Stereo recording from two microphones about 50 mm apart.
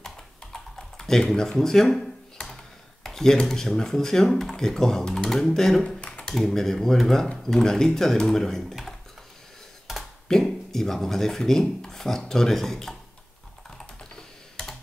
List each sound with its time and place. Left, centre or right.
0.0 s computer keyboard: centre
2.3 s speech: centre
5.9 s computer keyboard: left
6.2 s speech: centre
10.2 s speech: centre
13.7 s computer keyboard: centre